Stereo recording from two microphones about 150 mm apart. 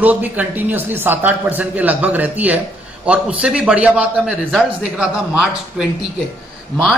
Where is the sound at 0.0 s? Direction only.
10° right (ahead or behind).